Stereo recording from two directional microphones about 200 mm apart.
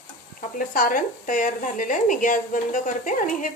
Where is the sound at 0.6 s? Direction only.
40° left (ahead or behind).